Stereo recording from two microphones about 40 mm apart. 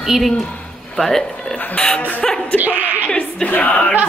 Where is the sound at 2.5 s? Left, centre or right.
Right.